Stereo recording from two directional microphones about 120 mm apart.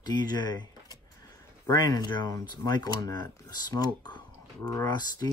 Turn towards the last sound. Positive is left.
turn(degrees=35)  # may be behind; listen again after turning